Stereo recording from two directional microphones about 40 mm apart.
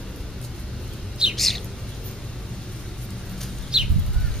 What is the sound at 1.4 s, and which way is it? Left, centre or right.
Bird, centre.